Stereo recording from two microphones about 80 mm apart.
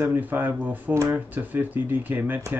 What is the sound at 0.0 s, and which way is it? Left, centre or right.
Speech, right.